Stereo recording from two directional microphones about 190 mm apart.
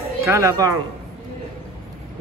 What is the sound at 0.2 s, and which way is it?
Speech, 15° right (ahead or behind).